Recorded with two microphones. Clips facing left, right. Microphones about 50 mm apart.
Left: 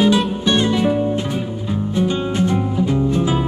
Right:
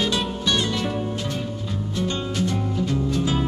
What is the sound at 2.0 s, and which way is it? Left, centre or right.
Music, left.